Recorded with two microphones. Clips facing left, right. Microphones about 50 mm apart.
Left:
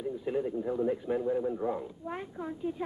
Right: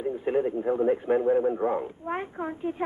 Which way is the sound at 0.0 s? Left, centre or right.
Right.